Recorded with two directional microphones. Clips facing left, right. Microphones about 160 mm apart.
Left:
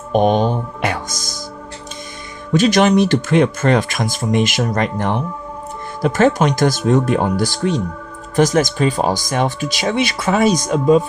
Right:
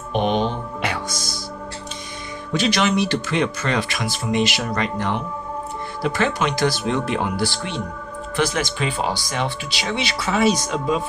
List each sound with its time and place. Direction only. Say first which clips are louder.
0.1 s music: left 6 dB; 45° left (ahead or behind)
2.5 s speech: left 7 dB; 45° left (ahead or behind)